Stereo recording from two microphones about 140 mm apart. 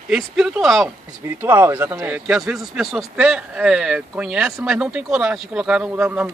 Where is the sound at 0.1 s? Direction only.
5° right (ahead or behind).